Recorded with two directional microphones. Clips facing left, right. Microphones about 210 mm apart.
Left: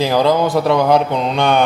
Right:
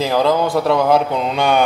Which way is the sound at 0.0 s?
Centre (ahead or behind).